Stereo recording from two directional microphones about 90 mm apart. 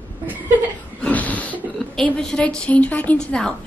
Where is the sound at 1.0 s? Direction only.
15° left (ahead or behind).